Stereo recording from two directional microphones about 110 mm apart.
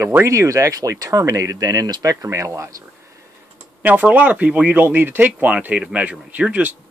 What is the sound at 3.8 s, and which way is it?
Speech, 15° right (ahead or behind).